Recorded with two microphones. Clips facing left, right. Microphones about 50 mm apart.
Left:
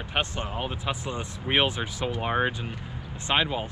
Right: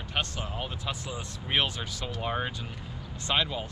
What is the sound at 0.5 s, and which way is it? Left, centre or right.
Speech, left.